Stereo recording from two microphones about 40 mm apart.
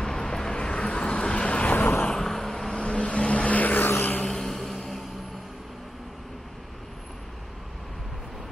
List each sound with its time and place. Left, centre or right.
0.0 s vehicle: centre
0.6 s vehicle: left
2.0 s vehicle: centre
2.7 s vehicle: left
3.5 s vehicle: left
4.2 s a sound: centre